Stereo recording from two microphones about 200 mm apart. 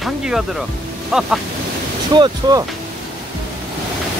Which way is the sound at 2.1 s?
20° right (ahead or behind).